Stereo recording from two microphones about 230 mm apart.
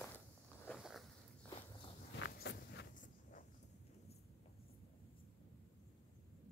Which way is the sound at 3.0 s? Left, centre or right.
Left.